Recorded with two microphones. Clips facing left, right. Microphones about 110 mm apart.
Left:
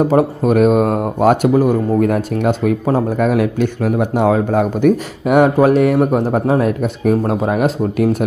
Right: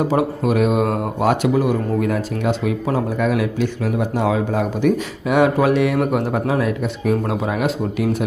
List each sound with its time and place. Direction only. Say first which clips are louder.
0.1 s speech: left 5 dB; 45° left (ahead or behind)